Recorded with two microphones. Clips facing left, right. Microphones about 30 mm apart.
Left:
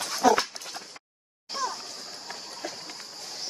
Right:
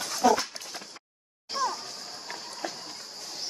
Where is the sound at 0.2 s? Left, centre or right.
Left.